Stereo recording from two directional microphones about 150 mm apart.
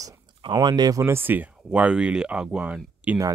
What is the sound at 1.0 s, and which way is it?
Speech, 15° right (ahead or behind).